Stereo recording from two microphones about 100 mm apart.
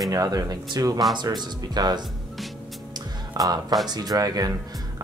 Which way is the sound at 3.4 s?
40° right (ahead or behind).